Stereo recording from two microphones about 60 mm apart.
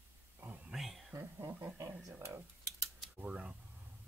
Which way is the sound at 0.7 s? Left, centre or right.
Centre.